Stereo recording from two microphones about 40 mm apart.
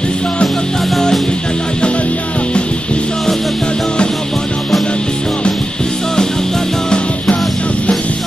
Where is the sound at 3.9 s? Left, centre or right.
Left.